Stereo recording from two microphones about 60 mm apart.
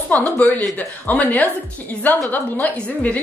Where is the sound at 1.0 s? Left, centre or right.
Left.